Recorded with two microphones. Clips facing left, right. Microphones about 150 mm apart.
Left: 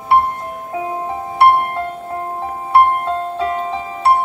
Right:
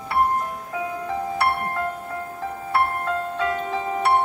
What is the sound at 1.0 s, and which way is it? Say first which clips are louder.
Music: left 10 dB; 25° left (ahead or behind).